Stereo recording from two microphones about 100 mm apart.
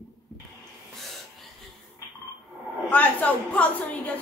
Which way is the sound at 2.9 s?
15° left (ahead or behind).